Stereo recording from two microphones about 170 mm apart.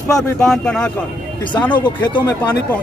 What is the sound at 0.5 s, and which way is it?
Speech, 5° left (ahead or behind).